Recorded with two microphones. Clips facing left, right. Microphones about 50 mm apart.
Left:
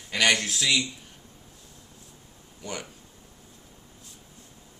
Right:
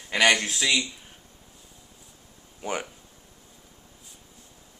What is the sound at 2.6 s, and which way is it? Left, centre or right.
Speech, right.